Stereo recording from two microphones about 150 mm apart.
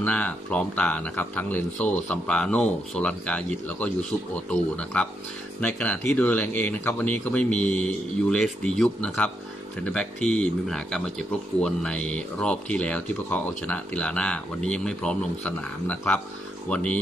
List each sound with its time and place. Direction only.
0.0 s speech: 10° left (ahead or behind)
4.9 s speech: 10° left (ahead or behind)